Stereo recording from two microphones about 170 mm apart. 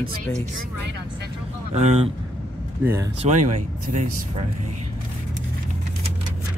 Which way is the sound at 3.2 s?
45° right (ahead or behind).